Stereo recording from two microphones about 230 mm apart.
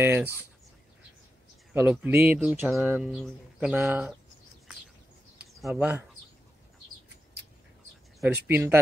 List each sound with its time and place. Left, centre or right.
0.0 s speech: centre
1.7 s speech: centre
5.7 s speech: centre
8.5 s speech: centre